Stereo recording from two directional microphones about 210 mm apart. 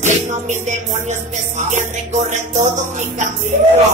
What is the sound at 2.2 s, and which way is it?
Music, 35° right (ahead or behind).